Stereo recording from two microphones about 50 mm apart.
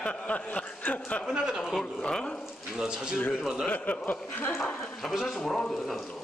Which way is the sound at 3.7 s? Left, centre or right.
Left.